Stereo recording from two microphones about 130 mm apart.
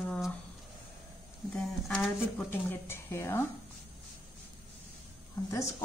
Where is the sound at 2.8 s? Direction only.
20° left (ahead or behind).